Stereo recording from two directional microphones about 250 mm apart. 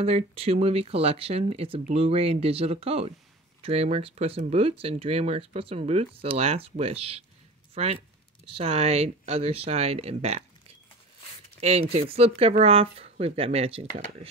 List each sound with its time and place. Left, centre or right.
0.0 s speech: right
11.6 s speech: right